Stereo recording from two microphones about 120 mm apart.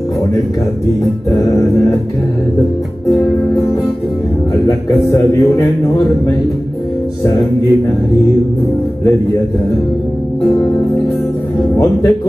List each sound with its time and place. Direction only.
4.6 s music: 25° left (ahead or behind)